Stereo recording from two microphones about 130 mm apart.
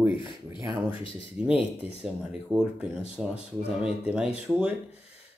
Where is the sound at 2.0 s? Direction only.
5° right (ahead or behind).